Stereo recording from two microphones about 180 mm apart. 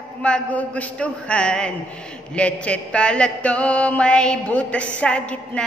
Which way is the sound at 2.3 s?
5° left (ahead or behind).